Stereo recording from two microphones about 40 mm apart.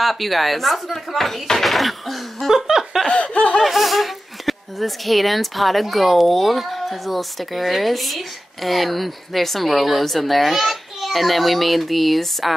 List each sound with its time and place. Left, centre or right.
0.0 s speech: centre
2.5 s speech: centre
3.1 s laughter: left
3.6 s speech: centre